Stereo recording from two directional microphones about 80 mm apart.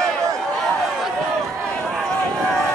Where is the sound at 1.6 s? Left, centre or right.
Centre.